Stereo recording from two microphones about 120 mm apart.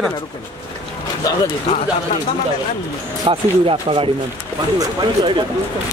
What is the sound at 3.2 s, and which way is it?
Speech, 45° right (ahead or behind).